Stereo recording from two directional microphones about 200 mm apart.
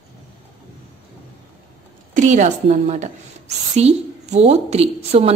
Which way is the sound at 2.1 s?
40° right (ahead or behind).